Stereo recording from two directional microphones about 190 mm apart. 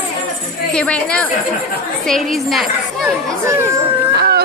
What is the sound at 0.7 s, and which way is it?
A woman's voice, 5° left (ahead or behind).